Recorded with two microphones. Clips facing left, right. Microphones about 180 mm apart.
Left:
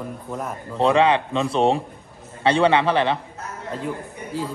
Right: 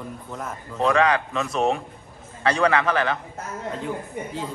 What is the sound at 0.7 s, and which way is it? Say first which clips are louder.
A man's voice: left 3 dB; 30° left (ahead or behind).